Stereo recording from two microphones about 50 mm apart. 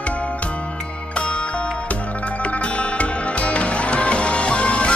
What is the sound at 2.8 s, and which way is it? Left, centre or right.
Music, left.